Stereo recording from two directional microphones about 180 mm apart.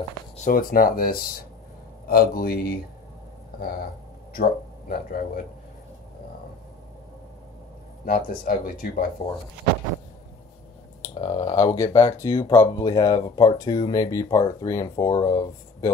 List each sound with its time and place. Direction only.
0.4 s a man's voice: 50° left (ahead or behind)
8.0 s speech: 55° left (ahead or behind)
11.1 s speech: 30° left (ahead or behind)